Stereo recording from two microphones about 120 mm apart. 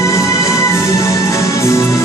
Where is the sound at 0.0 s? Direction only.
25° left (ahead or behind).